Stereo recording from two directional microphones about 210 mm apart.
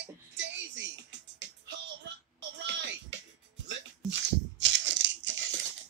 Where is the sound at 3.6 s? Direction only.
60° right (ahead or behind).